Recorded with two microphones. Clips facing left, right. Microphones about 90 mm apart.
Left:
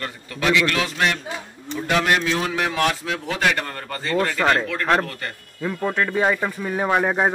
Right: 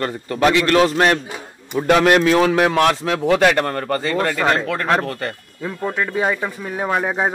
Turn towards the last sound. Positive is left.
turn(degrees=0)  # may be behind; listen again after turning